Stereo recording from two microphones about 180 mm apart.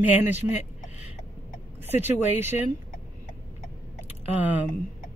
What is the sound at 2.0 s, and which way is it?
Speech, 10° right (ahead or behind).